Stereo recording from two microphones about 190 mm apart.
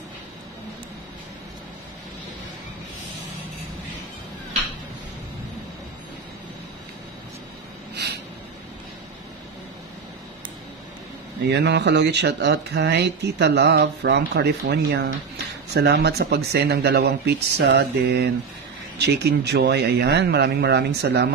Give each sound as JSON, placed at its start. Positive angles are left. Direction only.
{"t": 11.4, "sound": "speech", "side_deg": -60}